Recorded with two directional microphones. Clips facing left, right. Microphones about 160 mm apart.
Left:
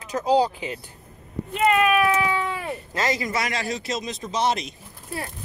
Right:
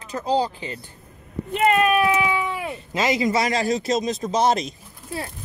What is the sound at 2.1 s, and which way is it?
Cat, 15° right (ahead or behind).